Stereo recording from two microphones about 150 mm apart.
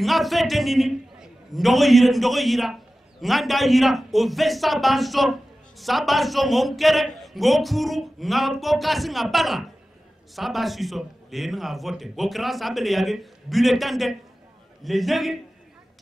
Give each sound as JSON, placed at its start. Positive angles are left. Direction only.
{"t": 0.0, "sound": "a man's voice", "side_deg": 0}